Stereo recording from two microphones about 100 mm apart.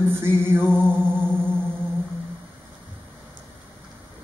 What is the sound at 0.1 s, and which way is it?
Music, 25° right (ahead or behind).